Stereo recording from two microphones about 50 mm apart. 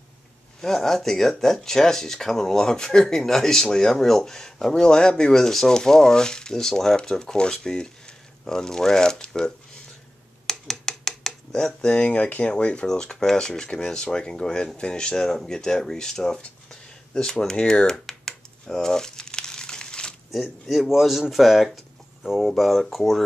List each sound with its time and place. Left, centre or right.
0.6 s speech: centre
10.4 s a sound: centre
12.0 s speech: left; by 16.3 s centre
17.1 s computer keyboard: centre
20.6 s speech: centre